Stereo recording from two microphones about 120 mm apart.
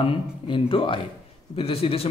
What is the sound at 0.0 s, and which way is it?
A man's voice, 45° left (ahead or behind).